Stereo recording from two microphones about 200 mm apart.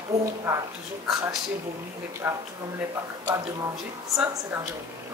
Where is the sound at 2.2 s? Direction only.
10° right (ahead or behind).